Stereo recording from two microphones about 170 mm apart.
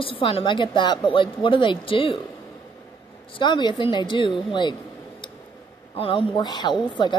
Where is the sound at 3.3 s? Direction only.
25° left (ahead or behind).